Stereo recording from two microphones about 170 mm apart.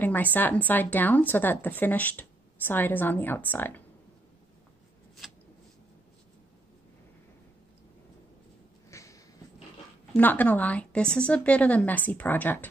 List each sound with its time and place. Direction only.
0.0 s speech: 10° left (ahead or behind)
8.9 s a sound: 20° left (ahead or behind)
10.1 s speech: 10° left (ahead or behind)